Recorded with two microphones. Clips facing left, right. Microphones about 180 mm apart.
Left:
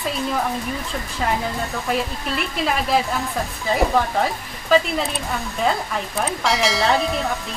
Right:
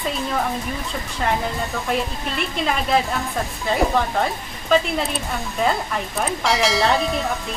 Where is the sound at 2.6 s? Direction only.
5° left (ahead or behind).